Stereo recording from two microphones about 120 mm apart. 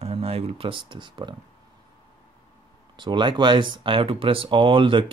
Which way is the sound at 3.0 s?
40° right (ahead or behind).